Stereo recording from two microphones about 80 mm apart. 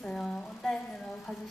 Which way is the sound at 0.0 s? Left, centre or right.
Centre.